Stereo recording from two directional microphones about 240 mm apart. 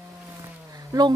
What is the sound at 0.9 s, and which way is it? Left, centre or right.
Speech, centre.